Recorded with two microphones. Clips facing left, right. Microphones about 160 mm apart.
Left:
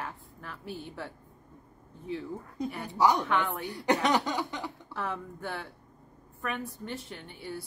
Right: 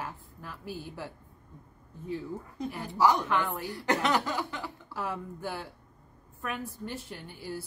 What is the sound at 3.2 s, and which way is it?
Speech, 5° right (ahead or behind).